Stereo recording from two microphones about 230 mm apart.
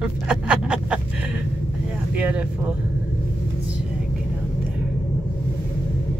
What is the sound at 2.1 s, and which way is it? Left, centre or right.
Speech, centre.